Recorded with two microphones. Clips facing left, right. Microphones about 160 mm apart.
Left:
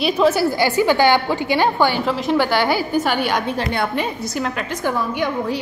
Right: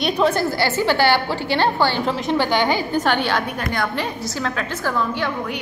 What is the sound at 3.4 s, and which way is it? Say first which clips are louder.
Speech: left 3 dB; 25° left (ahead or behind).